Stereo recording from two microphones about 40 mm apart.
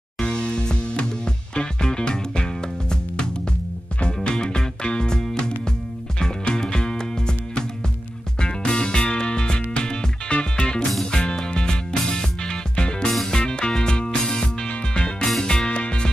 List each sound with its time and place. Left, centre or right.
0.2 s music: left